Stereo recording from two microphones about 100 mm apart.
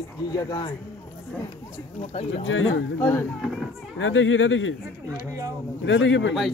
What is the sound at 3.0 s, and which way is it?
Speech, 20° left (ahead or behind).